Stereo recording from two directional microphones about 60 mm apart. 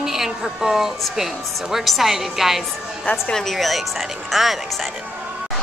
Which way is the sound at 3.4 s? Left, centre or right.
Centre.